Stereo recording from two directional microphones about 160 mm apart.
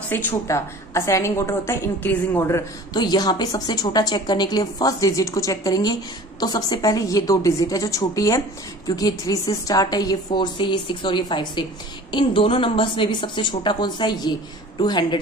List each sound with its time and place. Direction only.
0.1 s a woman's voice: 15° left (ahead or behind)